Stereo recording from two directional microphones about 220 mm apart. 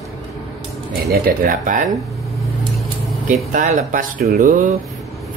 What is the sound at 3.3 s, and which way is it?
Speech, 40° right (ahead or behind).